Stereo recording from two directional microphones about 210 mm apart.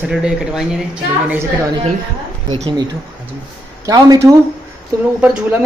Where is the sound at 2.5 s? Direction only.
20° right (ahead or behind).